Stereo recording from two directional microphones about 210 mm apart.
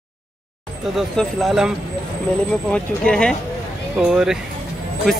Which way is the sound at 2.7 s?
5° left (ahead or behind).